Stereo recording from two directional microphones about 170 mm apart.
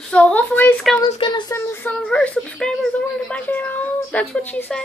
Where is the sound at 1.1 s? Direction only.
25° left (ahead or behind).